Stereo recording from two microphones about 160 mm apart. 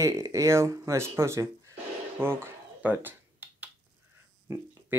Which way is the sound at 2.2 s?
15° right (ahead or behind).